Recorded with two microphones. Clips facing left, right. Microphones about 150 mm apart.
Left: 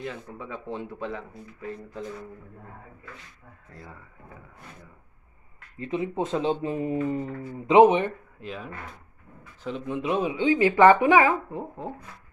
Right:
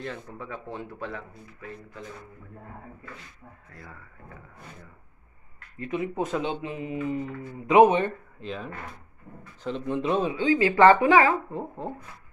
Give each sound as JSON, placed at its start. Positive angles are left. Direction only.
{"t": 0.0, "sound": "speech", "side_deg": 15}
{"t": 5.8, "sound": "speech", "side_deg": 25}
{"t": 7.6, "sound": "speech", "side_deg": 25}